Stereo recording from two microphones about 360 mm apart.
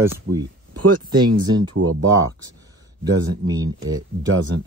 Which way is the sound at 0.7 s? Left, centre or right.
Right.